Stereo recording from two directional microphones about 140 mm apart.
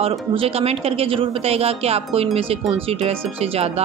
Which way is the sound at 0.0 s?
45° right (ahead or behind).